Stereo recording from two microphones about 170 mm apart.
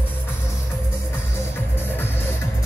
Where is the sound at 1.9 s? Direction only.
15° left (ahead or behind).